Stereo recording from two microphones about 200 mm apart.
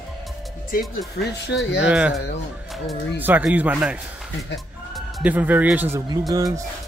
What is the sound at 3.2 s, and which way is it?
Speech, 10° right (ahead or behind).